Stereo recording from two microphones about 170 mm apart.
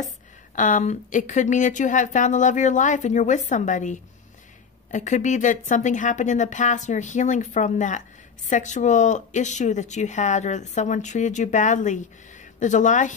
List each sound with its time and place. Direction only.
0.6 s speech: 50° left (ahead or behind)